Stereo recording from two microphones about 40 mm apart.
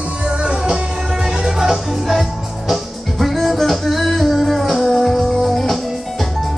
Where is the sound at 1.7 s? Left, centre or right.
Centre.